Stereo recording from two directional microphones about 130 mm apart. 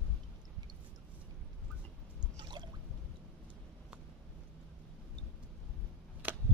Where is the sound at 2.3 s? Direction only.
35° right (ahead or behind).